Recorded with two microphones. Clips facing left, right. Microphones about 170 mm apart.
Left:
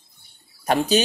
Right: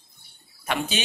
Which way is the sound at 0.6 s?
40° left (ahead or behind).